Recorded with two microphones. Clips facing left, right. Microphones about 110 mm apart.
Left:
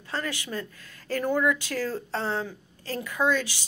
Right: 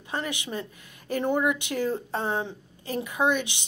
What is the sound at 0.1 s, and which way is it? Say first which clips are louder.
Speech: right 1 dB; 20° right (ahead or behind).